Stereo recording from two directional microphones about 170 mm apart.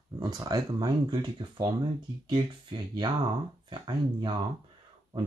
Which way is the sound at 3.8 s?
30° right (ahead or behind).